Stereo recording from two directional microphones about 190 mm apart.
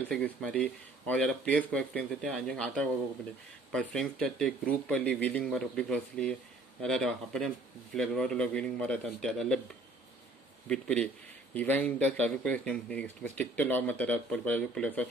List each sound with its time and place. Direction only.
0.1 s speech: 5° left (ahead or behind)
3.9 s speech: 5° left (ahead or behind)
10.7 s speech: 5° left (ahead or behind)